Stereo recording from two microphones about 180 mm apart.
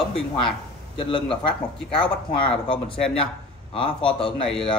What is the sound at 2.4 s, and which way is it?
A man's voice, 30° left (ahead or behind).